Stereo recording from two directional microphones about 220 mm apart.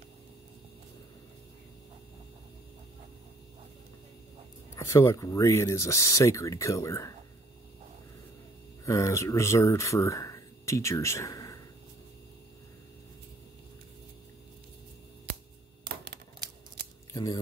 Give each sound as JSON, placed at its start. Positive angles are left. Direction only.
{"t": 4.7, "sound": "speech", "side_deg": 15}
{"t": 8.8, "sound": "speech", "side_deg": 15}
{"t": 15.8, "sound": "typewriter", "side_deg": -45}
{"t": 17.1, "sound": "speech", "side_deg": 15}